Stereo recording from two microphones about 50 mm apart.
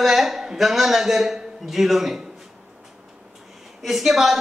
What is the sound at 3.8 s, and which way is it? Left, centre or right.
Speech, centre.